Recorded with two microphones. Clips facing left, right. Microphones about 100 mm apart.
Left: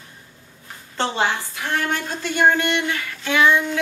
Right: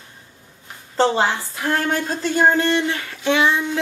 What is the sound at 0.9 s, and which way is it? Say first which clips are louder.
A woman's voice: right 4 dB; 30° right (ahead or behind).